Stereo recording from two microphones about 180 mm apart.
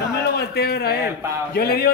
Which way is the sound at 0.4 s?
65° left (ahead or behind).